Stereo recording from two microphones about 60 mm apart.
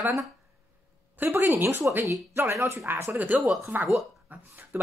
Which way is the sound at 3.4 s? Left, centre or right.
Centre.